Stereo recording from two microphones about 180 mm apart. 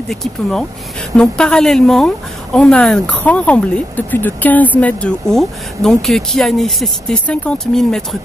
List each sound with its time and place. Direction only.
0.1 s a woman's voice: 5° left (ahead or behind)